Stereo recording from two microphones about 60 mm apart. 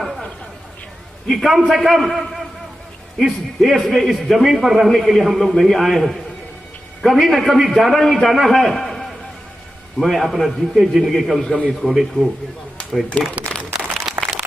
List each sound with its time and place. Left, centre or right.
1.3 s a man's voice: centre
11.4 s a man's voice: centre
11.8 s a man's voice: centre
13.7 s a sound: centre